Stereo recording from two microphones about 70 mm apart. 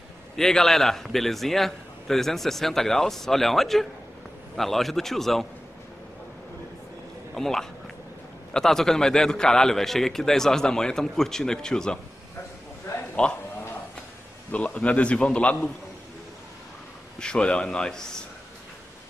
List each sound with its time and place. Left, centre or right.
0.4 s a man's voice: centre
7.3 s a man's voice: centre
12.9 s a sound: left
14.5 s a man's voice: centre
17.2 s a man's voice: centre